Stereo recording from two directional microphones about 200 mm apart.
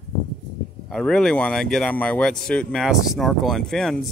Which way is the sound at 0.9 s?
5° left (ahead or behind).